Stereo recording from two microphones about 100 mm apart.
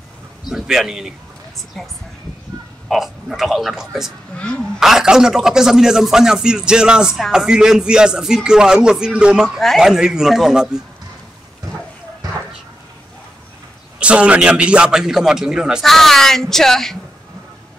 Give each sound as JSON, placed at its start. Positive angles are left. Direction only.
{"t": 0.5, "sound": "a man's voice", "side_deg": -5}
{"t": 4.4, "sound": "speech", "side_deg": 10}
{"t": 4.7, "sound": "a man's voice", "side_deg": -5}
{"t": 12.2, "sound": "a sound", "side_deg": -40}
{"t": 13.9, "sound": "a man's voice", "side_deg": -10}